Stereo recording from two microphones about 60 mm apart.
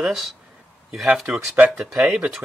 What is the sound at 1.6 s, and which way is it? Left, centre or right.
Speech, centre.